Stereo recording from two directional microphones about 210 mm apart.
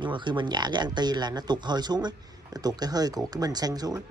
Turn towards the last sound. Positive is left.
turn(degrees=-20)  # may be behind; listen again after turning